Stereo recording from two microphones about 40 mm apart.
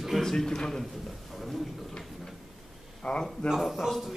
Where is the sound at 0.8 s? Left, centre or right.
Centre.